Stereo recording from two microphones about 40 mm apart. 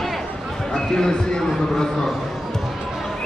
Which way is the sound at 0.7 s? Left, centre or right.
Centre.